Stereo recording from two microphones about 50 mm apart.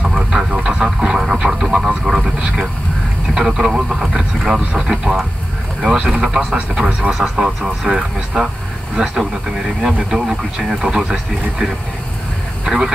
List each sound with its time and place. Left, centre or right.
0.0 s a sound: centre
3.3 s a man's voice: centre
12.6 s speech: centre